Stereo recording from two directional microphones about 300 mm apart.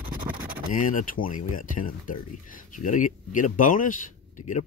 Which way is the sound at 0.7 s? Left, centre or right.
Left.